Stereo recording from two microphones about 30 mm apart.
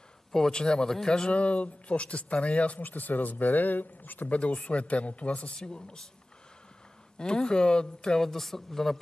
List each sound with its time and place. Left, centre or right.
0.5 s speech: left
1.3 s speech: left
2.8 s speech: left
4.3 s speech: left
5.7 s speech: left
7.2 s speech: left
8.2 s a man's voice: centre